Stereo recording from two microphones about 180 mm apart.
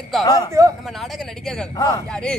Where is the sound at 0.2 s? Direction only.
20° left (ahead or behind).